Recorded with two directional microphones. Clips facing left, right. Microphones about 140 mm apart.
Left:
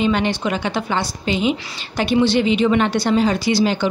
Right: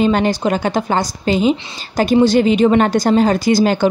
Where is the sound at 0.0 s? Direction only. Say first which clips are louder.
Right 4 dB; 40° right (ahead or behind).